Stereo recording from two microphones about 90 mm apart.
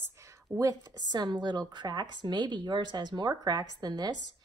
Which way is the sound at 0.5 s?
45° right (ahead or behind).